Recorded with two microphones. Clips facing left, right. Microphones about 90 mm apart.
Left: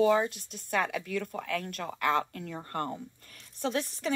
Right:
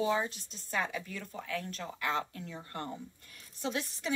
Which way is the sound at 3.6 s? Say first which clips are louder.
Left 5 dB; 40° left (ahead or behind).